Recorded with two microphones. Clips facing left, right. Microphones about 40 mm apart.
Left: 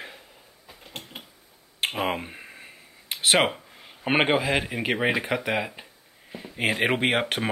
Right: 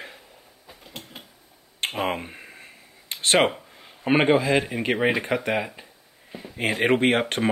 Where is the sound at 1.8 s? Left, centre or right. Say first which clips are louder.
Even; centre.